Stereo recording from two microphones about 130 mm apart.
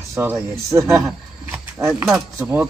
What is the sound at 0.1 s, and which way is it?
Speech, 20° right (ahead or behind).